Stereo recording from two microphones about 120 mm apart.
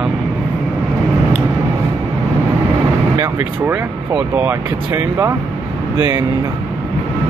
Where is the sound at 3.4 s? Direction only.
15° right (ahead or behind).